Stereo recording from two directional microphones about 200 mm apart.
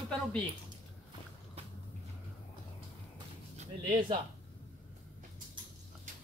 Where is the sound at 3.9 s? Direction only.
25° right (ahead or behind).